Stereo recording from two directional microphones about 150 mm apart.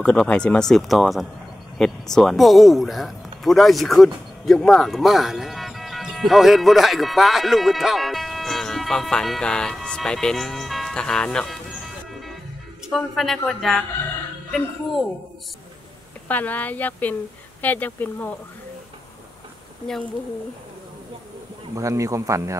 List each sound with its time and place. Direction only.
0.0 s speech: 5° left (ahead or behind)
12.9 s speech: centre (ahead or behind)
16.3 s speech: 10° left (ahead or behind)
21.7 s speech: 20° right (ahead or behind)